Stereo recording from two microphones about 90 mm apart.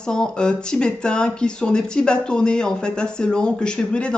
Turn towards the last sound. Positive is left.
turn(degrees=10)  # may be behind; listen again after turning